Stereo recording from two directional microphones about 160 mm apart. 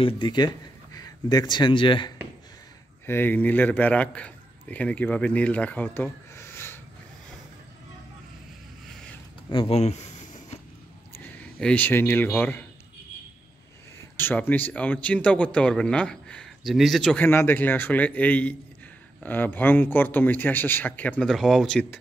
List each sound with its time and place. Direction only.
0.0 s speech: 30° left (ahead or behind)
3.1 s a man's voice: 10° left (ahead or behind)
9.5 s a sound: 35° left (ahead or behind)
11.1 s speech: 10° left (ahead or behind)
14.1 s speech: 10° left (ahead or behind)